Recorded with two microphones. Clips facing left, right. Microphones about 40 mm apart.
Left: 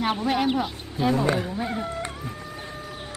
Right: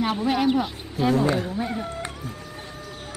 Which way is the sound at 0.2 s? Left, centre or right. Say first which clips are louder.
Right 2 dB; centre.